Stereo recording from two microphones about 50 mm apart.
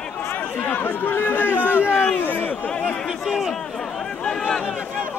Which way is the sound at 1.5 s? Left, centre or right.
Right.